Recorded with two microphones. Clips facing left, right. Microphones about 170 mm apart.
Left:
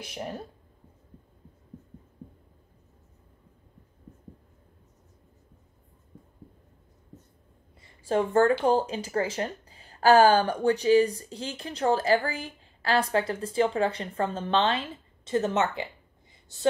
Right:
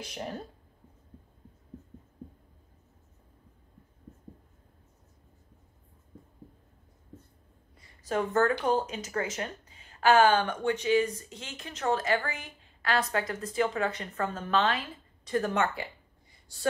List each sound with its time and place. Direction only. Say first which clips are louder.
0.0 s speech: left 2 dB; 10° left (ahead or behind)
8.0 s speech: left 4 dB; 30° left (ahead or behind)